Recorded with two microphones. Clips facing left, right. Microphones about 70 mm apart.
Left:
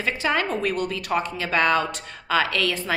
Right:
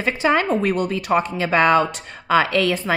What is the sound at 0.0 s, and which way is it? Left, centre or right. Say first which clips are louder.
A woman's voice: right 5 dB; right.